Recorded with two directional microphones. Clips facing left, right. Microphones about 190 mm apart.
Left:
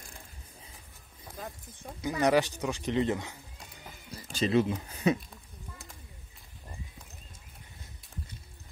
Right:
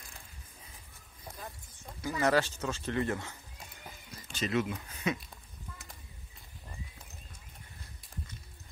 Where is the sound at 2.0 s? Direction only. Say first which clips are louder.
Left 3 dB; 20° left (ahead or behind).